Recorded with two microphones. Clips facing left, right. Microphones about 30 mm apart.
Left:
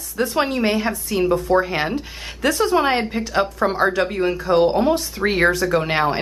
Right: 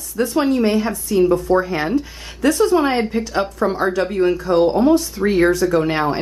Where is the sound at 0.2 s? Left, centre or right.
Centre.